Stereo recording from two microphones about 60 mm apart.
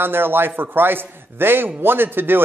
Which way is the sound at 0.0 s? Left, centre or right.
Right.